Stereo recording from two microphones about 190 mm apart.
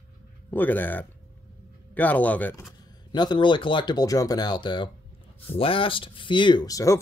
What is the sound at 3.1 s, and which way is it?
Speech, 25° left (ahead or behind).